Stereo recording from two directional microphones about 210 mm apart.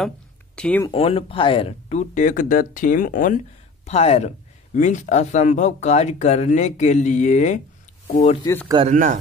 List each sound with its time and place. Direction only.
0.6 s speech: 5° left (ahead or behind)
0.8 s speech: 25° left (ahead or behind)
8.8 s speech: 35° right (ahead or behind)